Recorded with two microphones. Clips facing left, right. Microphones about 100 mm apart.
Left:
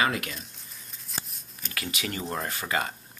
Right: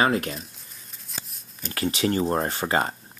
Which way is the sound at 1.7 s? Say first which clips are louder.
Right 10 dB; 35° right (ahead or behind).